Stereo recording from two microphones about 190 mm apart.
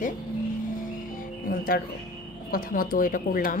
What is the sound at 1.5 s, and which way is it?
Speech, 50° left (ahead or behind).